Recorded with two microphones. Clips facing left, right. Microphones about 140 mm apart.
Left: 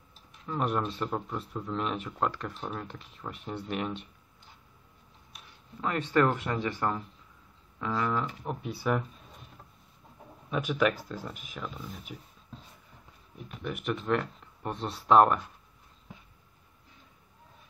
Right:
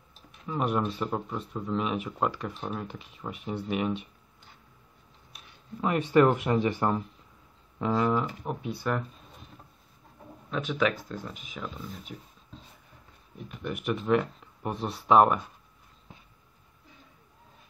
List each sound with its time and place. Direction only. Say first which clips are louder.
0.5 s speech: right 2 dB; 5° right (ahead or behind)
5.8 s speech: right 4 dB; 15° right (ahead or behind)
8.2 s speech: right 2 dB; 5° right (ahead or behind)
10.5 s speech: even; 5° left (ahead or behind)
13.5 s speech: right 2 dB; centre (ahead or behind)